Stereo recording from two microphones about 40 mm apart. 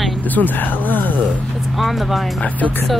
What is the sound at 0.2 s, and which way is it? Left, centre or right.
Speech, left.